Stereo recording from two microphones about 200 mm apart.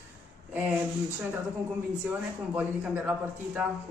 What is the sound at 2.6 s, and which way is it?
A man's voice, 5° right (ahead or behind).